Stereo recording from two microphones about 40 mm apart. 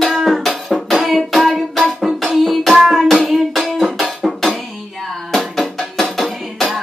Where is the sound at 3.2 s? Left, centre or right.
Centre.